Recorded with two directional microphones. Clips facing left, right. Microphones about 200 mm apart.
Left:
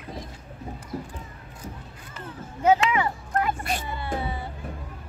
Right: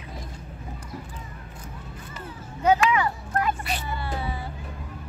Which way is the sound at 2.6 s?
25° left (ahead or behind).